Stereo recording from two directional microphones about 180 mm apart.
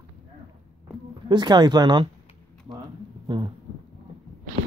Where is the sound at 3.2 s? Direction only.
25° right (ahead or behind).